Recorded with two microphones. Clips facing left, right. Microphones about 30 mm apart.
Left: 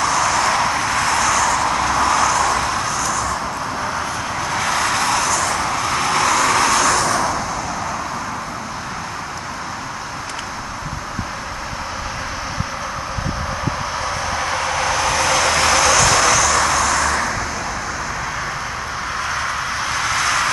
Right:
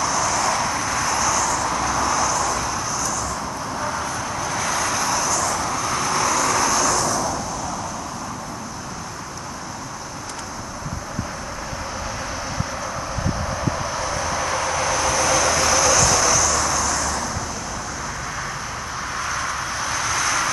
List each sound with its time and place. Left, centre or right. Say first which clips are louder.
0.0 s vehicle: left 4 dB; left
3.8 s vehicle: left 3 dB; left
13.7 s vehicle: left 2 dB; left
19.1 s a sound: left 3 dB; left